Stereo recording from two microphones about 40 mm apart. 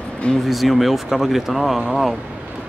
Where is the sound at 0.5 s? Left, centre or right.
Centre.